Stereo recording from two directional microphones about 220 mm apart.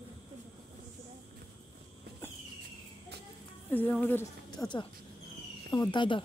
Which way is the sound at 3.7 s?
10° left (ahead or behind).